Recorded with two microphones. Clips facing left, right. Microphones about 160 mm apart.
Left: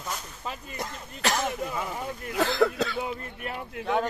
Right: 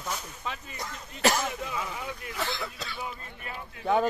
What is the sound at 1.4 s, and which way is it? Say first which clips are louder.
Speech: left 3 dB; 45° left (ahead or behind).